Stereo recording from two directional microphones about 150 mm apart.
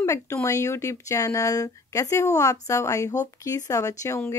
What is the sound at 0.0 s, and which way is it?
Speech, 20° left (ahead or behind).